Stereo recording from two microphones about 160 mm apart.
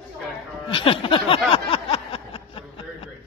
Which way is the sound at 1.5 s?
35° left (ahead or behind).